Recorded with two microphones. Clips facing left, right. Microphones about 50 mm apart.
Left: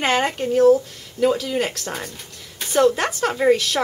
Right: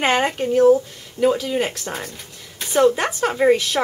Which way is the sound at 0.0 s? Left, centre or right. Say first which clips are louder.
Right 1 dB; centre.